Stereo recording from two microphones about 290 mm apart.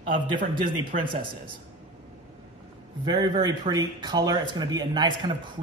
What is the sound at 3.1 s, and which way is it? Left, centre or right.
Speech, centre.